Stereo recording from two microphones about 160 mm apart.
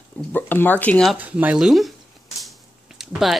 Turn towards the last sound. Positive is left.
turn(degrees=0)  # may be behind; listen again after turning